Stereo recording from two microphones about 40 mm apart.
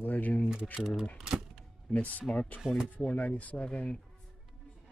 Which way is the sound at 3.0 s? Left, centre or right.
Left.